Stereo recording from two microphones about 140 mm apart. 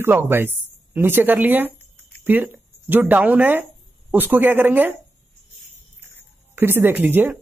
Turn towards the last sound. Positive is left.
turn(degrees=-15)  # may be behind; listen again after turning